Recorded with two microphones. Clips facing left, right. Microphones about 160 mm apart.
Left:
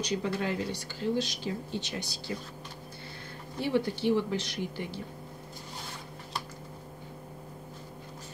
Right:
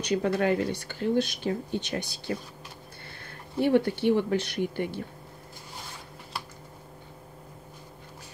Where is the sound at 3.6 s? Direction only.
55° right (ahead or behind).